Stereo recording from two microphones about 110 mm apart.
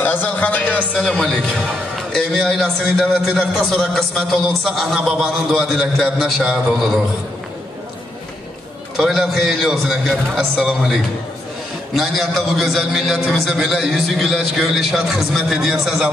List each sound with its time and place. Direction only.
0.0 s a man's voice: 15° left (ahead or behind); by 6.5 s centre (ahead or behind)
8.9 s a man's voice: centre (ahead or behind)